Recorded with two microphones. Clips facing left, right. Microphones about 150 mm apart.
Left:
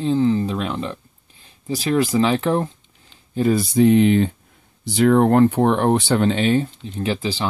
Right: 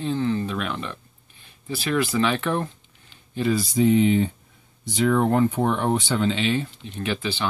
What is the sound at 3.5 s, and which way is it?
Speech, 60° left (ahead or behind).